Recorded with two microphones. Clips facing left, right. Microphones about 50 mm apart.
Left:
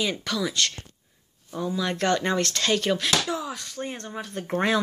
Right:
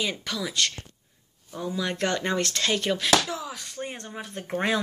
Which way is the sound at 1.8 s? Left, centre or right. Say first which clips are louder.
Left 3 dB; centre.